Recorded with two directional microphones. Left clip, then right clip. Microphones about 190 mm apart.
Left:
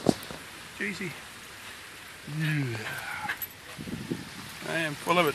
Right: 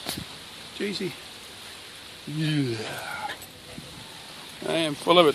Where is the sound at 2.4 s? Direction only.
10° right (ahead or behind).